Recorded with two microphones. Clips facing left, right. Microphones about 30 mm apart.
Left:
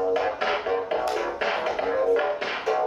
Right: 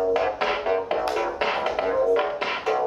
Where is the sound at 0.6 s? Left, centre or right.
Centre.